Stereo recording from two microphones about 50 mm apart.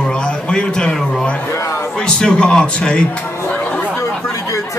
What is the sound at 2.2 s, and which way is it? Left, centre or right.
Speech, centre.